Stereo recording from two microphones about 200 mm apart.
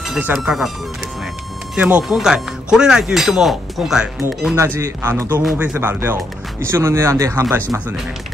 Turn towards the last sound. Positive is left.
turn(degrees=-15)  # may be behind; listen again after turning